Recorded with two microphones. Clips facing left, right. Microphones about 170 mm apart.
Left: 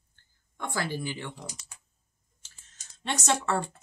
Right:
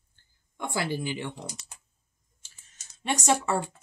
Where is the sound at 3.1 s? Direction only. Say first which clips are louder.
Right 2 dB; 10° right (ahead or behind).